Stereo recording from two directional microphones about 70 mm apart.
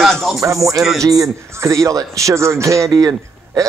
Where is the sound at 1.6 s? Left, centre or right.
Right.